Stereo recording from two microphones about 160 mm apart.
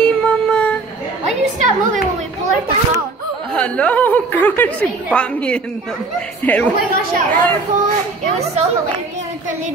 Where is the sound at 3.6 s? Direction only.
5° left (ahead or behind).